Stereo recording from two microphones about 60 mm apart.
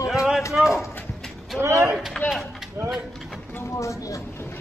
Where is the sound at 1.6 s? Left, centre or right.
Right.